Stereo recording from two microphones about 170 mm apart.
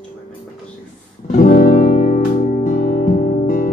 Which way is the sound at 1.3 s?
55° left (ahead or behind).